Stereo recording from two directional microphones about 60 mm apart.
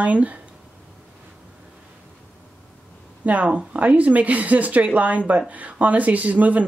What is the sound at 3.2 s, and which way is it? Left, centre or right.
Speech, right.